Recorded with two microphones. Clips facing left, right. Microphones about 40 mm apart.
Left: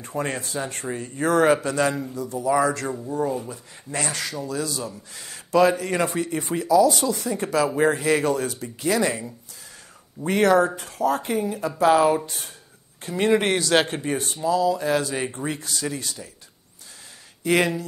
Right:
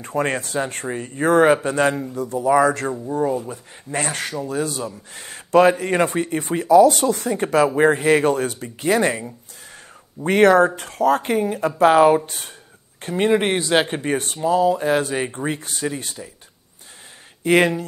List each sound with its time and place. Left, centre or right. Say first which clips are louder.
0.0 s speech: right 5 dB; right
13.2 s a man's voice: right 2 dB; centre
14.0 s speech: right 3 dB; right
17.4 s speech: right 4 dB; right